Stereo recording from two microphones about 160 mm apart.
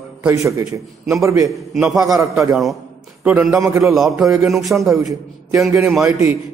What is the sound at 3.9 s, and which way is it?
A man's voice, centre (ahead or behind).